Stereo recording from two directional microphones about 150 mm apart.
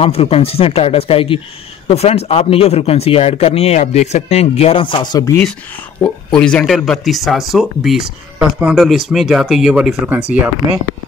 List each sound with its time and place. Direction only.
0.0 s speech: 40° left (ahead or behind)
5.9 s speech: 10° left (ahead or behind); by 10.5 s 10° right (ahead or behind)